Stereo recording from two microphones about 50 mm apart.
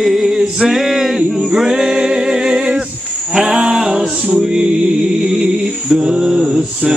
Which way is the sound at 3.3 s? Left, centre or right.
Centre.